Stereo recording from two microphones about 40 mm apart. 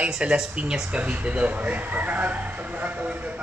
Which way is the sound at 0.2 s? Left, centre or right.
Right.